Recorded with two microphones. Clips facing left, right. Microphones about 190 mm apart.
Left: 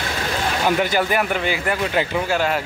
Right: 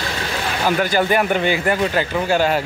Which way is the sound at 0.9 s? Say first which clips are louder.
Right 3 dB; 5° left (ahead or behind).